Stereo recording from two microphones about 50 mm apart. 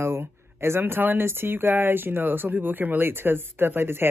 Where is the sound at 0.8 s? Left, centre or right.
Right.